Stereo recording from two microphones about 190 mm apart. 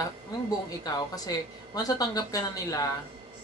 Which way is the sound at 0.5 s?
20° left (ahead or behind).